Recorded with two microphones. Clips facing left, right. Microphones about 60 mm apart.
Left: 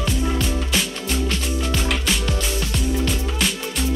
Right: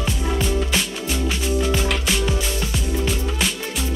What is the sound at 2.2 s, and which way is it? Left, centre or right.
Music, centre.